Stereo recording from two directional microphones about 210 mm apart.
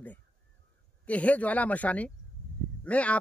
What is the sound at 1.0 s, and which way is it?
Speech, 5° left (ahead or behind).